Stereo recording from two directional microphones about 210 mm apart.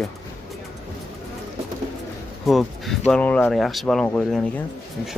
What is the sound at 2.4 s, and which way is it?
Speech, centre (ahead or behind).